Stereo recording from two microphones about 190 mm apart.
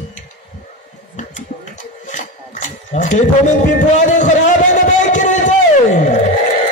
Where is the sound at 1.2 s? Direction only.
40° left (ahead or behind).